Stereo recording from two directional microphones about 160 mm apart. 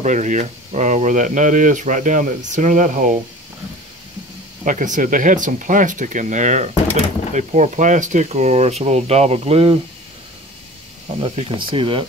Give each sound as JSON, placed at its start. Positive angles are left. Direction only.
{"t": 0.0, "sound": "speech", "side_deg": -50}
{"t": 4.6, "sound": "speech", "side_deg": -55}
{"t": 11.1, "sound": "speech", "side_deg": -30}